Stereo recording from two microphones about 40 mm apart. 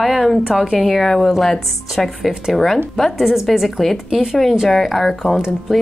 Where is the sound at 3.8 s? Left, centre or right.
Centre.